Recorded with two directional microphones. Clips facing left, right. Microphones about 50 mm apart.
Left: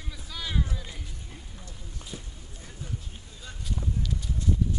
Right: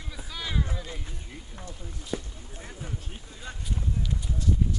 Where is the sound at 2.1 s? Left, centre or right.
Right.